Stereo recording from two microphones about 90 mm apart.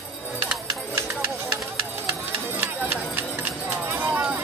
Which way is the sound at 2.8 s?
20° right (ahead or behind).